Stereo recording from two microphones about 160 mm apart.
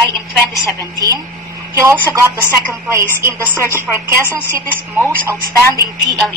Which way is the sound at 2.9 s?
15° right (ahead or behind).